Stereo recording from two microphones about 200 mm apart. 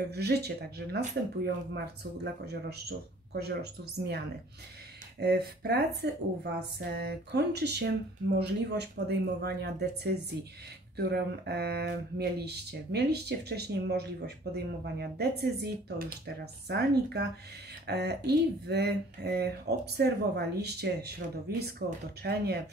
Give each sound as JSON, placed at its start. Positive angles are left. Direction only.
{"t": 0.1, "sound": "speech", "side_deg": -55}
{"t": 5.2, "sound": "speech", "side_deg": -55}